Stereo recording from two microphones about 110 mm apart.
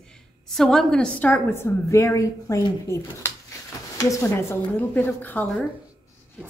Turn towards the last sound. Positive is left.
turn(degrees=15)  # may be behind; listen again after turning